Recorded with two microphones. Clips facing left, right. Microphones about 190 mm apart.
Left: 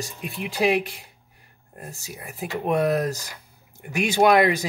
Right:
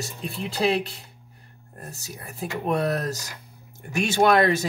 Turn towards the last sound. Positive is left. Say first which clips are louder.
# left 1 dB
turn(degrees=15)  # may be behind; listen again after turning